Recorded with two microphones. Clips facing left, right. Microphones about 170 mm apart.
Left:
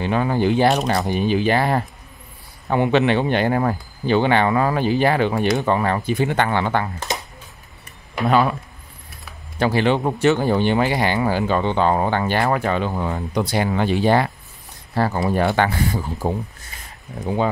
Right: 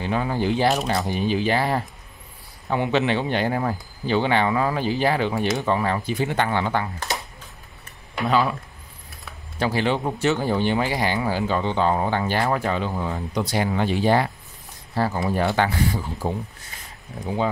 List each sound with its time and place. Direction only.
0.0 s speech: 65° left (ahead or behind)
7.1 s a sound: 20° left (ahead or behind)
8.3 s speech: 55° left (ahead or behind)
9.6 s speech: 65° left (ahead or behind); by 16.3 s 45° left (ahead or behind)